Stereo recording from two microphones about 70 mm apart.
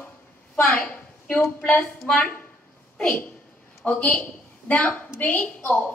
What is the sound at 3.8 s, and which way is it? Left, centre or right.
A woman's voice, centre.